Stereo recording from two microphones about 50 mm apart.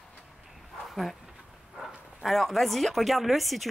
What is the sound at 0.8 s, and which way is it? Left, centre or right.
Dog, centre.